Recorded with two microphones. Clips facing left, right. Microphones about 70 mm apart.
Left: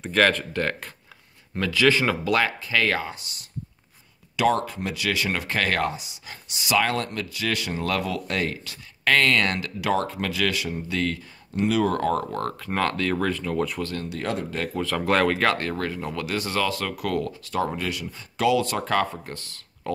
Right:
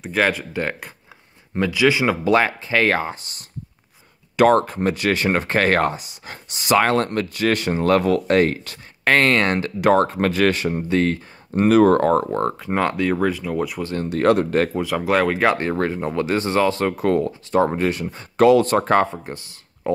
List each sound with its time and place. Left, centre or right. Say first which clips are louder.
0.0 s speech: even; centre
2.2 s speech: right 5 dB; right; by 13.8 s centre
14.0 s speech: right 11 dB; right
14.7 s speech: right 3 dB; centre; by 19.0 s right
19.1 s speech: right 4 dB; centre